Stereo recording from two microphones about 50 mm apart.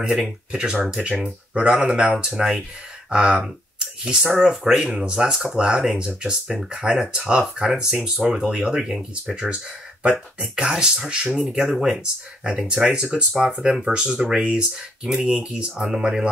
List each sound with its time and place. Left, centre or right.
0.5 s speech: centre
3.1 s speech: centre
10.4 s speech: centre